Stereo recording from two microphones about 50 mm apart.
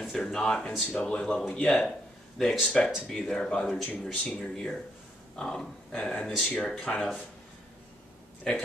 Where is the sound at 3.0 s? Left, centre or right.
Centre.